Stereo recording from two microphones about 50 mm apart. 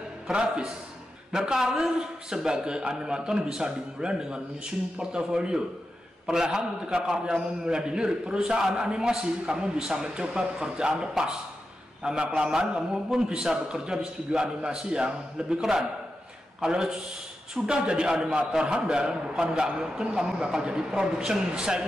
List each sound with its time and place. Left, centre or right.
0.3 s a man's voice: centre
16.6 s a man's voice: centre